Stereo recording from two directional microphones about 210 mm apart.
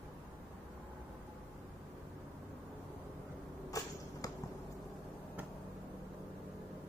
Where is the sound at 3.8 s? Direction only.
15° left (ahead or behind).